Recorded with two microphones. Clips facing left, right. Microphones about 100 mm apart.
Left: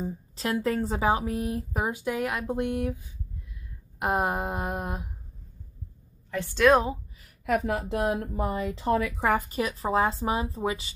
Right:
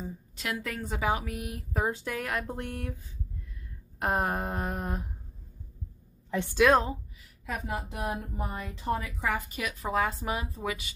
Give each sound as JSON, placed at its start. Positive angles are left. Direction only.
{"t": 0.0, "sound": "a woman's voice", "side_deg": 35}
{"t": 1.7, "sound": "speech", "side_deg": 15}
{"t": 4.0, "sound": "speech", "side_deg": 15}
{"t": 6.5, "sound": "a woman's voice", "side_deg": 0}
{"t": 7.4, "sound": "a woman's voice", "side_deg": 75}
{"t": 9.2, "sound": "a woman's voice", "side_deg": 40}